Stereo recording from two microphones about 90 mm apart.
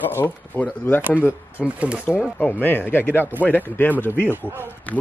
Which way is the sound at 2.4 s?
20° left (ahead or behind).